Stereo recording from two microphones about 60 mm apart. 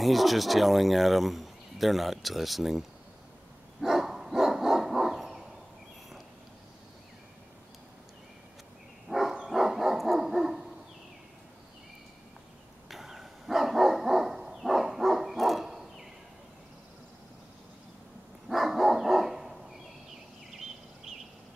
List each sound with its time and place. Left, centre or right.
0.0 s speech: centre
3.8 s dog: centre
9.1 s dog: right
9.5 s dog: centre
12.8 s dog: centre
18.5 s dog: centre